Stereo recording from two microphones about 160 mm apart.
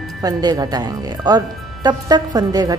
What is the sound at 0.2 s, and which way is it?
Speech, 25° right (ahead or behind).